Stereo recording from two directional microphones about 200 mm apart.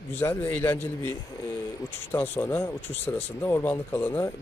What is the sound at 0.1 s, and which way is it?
Speech, 10° left (ahead or behind).